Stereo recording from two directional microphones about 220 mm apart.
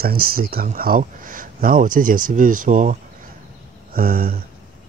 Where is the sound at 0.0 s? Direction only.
40° right (ahead or behind).